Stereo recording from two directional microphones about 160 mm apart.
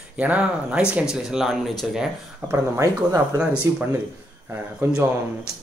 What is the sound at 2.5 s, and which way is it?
Speech, 20° right (ahead or behind).